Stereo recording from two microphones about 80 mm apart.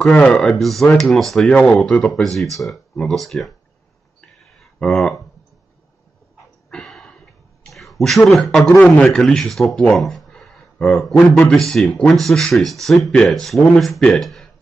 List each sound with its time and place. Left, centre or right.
0.0 s speech: centre
1.5 s speech: centre
4.7 s speech: centre
6.7 s a sound: centre
7.6 s speech: centre